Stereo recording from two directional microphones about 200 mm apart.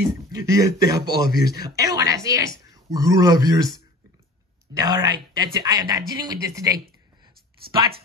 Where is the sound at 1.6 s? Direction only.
20° right (ahead or behind).